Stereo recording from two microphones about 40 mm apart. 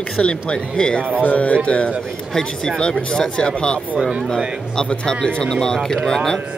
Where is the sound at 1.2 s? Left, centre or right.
Left.